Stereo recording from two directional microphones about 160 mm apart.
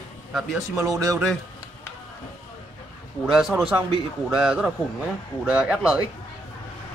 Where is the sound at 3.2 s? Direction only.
5° right (ahead or behind).